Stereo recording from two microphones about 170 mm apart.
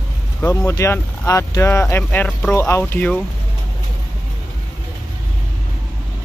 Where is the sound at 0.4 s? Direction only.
15° left (ahead or behind).